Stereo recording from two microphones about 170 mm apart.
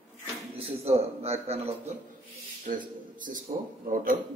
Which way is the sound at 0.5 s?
35° right (ahead or behind).